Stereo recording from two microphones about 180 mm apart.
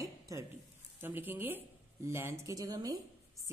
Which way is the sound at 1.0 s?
10° right (ahead or behind).